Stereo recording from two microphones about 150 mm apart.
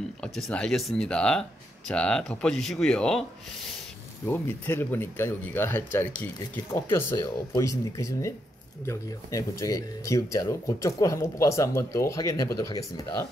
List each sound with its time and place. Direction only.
0.2 s speech: 5° left (ahead or behind)
4.3 s speech: 15° left (ahead or behind)